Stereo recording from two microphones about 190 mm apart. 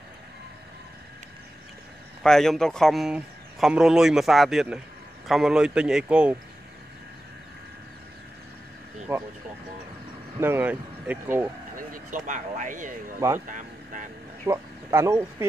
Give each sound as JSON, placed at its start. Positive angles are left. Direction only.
{"t": 2.2, "sound": "a man's voice", "side_deg": 0}
{"t": 9.1, "sound": "speech", "side_deg": -10}
{"t": 10.4, "sound": "speech", "side_deg": -10}
{"t": 11.7, "sound": "speech", "side_deg": -45}
{"t": 13.5, "sound": "vehicle", "side_deg": -45}
{"t": 14.4, "sound": "speech", "side_deg": -15}